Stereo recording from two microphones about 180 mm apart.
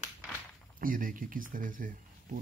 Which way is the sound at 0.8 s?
50° right (ahead or behind).